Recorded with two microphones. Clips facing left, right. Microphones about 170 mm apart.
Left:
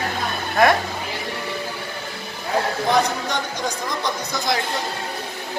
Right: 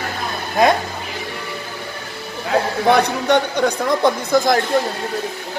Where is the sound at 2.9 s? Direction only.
65° right (ahead or behind).